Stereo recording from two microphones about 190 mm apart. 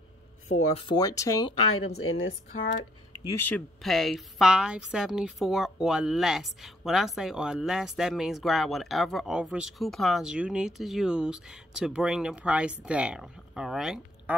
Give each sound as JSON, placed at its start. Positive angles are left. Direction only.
{"t": 0.5, "sound": "speech", "side_deg": 30}
{"t": 1.8, "sound": "a woman's voice", "side_deg": 90}
{"t": 3.3, "sound": "a woman's voice", "side_deg": 10}